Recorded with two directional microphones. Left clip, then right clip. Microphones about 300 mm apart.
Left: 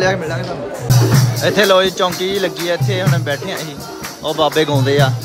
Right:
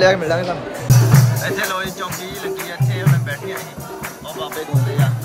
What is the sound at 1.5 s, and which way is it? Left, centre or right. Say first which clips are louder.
Speech: left 15 dB; centre.